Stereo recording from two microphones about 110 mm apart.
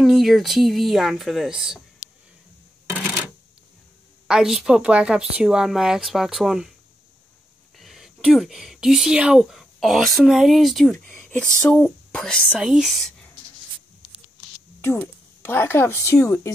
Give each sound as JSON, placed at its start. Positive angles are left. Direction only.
{"t": 0.0, "sound": "speech", "side_deg": 0}
{"t": 4.3, "sound": "speech", "side_deg": -5}
{"t": 7.7, "sound": "speech", "side_deg": 0}
{"t": 12.5, "sound": "speech", "side_deg": -5}
{"t": 14.8, "sound": "a woman's voice", "side_deg": 20}